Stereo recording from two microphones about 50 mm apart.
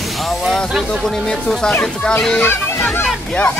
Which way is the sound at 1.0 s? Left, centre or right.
Centre.